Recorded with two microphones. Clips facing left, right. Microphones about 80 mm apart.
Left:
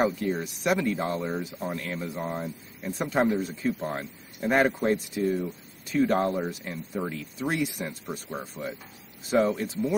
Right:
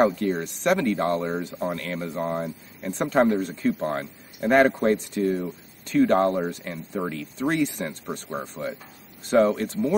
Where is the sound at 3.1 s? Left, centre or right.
Centre.